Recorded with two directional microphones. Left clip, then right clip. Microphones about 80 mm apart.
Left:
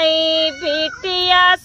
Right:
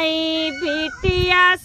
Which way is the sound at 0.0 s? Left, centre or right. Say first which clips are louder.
Left 6 dB; right.